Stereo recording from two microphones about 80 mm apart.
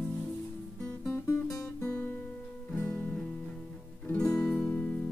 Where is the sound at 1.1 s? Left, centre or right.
Left.